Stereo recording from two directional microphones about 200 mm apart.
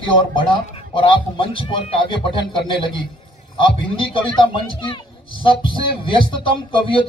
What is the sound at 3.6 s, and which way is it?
A man's voice, 25° left (ahead or behind).